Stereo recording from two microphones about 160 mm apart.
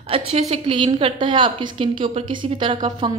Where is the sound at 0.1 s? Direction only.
40° right (ahead or behind).